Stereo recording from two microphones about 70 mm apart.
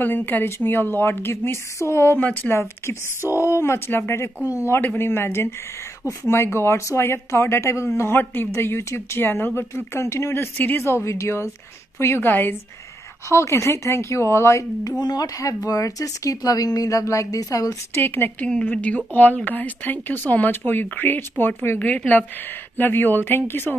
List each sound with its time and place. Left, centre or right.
0.0 s speech: left
2.1 s speech: left
3.3 s speech: left
13.3 s speech: left
15.0 s speech: left
18.0 s speech: left
18.5 s speech: centre